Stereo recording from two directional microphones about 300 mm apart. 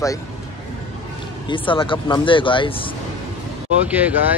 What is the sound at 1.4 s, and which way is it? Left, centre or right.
Speech, centre.